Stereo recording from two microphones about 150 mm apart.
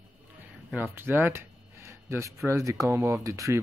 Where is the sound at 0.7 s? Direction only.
15° right (ahead or behind).